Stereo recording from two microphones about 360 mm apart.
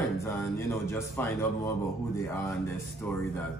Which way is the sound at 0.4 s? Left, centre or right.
Centre.